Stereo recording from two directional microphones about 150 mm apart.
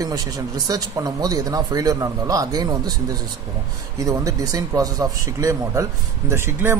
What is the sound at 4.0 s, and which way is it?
Speech, 20° right (ahead or behind).